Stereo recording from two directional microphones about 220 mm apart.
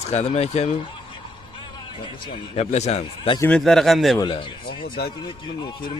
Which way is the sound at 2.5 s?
30° left (ahead or behind).